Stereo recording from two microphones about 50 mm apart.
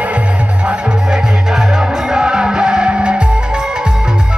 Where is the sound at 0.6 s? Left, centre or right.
Centre.